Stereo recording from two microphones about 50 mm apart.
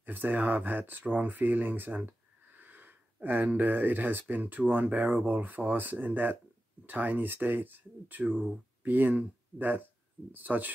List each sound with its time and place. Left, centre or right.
0.0 s speech: right